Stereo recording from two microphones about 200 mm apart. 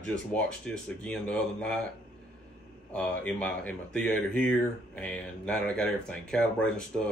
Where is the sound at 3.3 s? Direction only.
5° left (ahead or behind).